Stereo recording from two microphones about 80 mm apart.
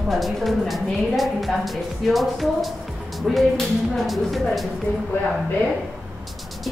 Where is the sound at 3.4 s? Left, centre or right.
Centre.